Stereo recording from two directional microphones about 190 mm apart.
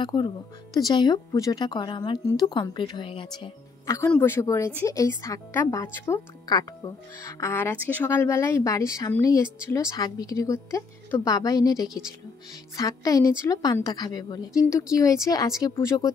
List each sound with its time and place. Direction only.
0.0 s a woman's voice: 25° left (ahead or behind)